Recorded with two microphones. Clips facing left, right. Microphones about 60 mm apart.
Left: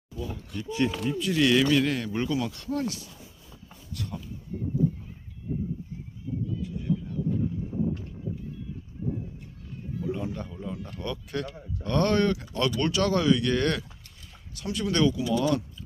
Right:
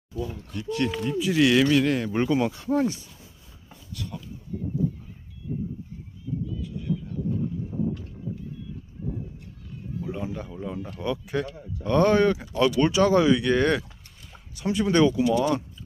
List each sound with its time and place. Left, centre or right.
0.7 s speech: centre
1.1 s a man's voice: centre
2.0 s speech: right
10.1 s a man's voice: centre